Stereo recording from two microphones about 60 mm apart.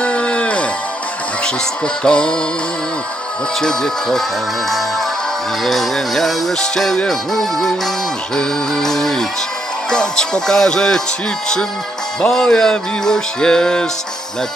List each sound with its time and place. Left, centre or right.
0.0 s music: centre
2.0 s music: centre
3.6 s music: centre
12.2 s music: centre